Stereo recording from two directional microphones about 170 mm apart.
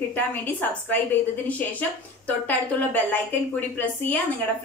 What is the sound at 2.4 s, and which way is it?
A woman's voice, 10° left (ahead or behind).